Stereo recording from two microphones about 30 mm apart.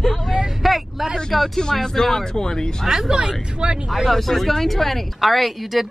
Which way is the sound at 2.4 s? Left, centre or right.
Left.